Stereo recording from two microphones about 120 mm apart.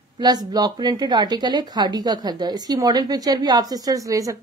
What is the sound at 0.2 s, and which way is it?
Speech, 35° right (ahead or behind).